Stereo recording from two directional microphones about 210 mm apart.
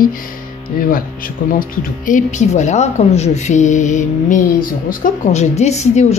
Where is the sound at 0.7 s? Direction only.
40° left (ahead or behind).